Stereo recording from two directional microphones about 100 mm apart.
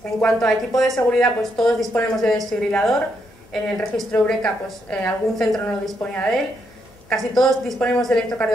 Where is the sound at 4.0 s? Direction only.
10° left (ahead or behind).